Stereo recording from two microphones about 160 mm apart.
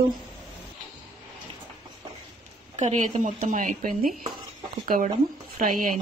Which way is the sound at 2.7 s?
45° right (ahead or behind).